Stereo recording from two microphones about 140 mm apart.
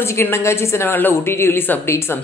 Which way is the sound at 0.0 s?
20° left (ahead or behind).